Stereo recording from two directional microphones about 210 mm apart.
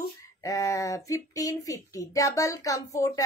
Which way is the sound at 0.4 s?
15° left (ahead or behind).